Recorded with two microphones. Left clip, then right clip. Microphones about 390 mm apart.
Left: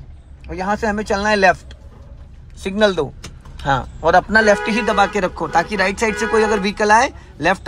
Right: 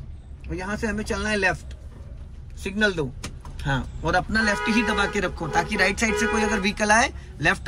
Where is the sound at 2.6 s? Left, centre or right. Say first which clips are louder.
Left 7 dB; centre.